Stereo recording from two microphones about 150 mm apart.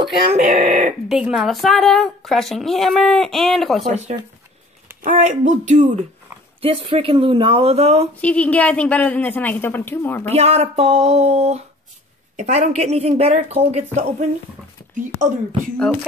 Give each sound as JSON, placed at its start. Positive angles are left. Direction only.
{"t": 0.4, "sound": "speech", "side_deg": -55}
{"t": 1.0, "sound": "a woman's voice", "side_deg": -5}
{"t": 5.0, "sound": "speech", "side_deg": -55}
{"t": 6.6, "sound": "speech", "side_deg": -40}
{"t": 8.2, "sound": "a woman's voice", "side_deg": 10}
{"t": 10.3, "sound": "speech", "side_deg": -45}